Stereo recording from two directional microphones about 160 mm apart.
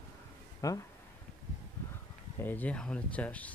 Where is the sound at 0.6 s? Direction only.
20° left (ahead or behind).